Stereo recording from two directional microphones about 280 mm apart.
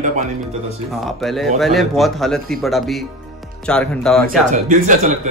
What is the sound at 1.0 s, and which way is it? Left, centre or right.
Speech, centre.